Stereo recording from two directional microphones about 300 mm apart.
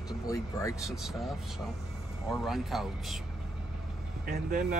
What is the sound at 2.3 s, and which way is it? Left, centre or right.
Speech, centre.